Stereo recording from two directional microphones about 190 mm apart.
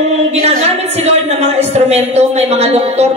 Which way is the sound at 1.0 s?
35° right (ahead or behind).